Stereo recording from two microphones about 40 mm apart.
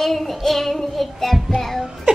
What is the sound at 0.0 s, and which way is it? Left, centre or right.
A child's voice, centre.